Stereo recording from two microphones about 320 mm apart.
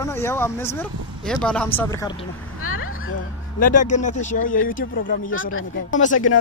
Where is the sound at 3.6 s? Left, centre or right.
Left.